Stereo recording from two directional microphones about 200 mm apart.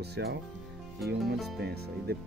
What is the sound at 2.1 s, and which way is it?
Speech, 50° right (ahead or behind).